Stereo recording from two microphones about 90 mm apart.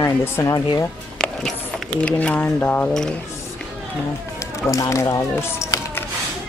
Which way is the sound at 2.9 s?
5° left (ahead or behind).